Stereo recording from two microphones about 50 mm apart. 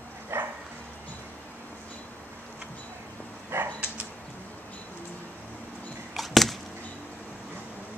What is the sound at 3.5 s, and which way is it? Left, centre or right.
Dog, right.